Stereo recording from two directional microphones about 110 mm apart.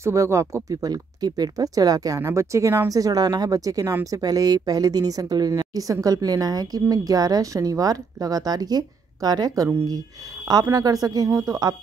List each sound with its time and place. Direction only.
0.0 s speech: 30° right (ahead or behind)